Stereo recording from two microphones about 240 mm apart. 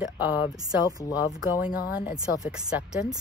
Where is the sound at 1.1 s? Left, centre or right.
Centre.